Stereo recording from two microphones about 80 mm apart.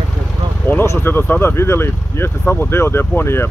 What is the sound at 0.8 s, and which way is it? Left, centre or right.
Speech, left.